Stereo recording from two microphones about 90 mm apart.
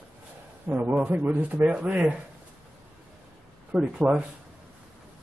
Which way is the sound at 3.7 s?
15° right (ahead or behind).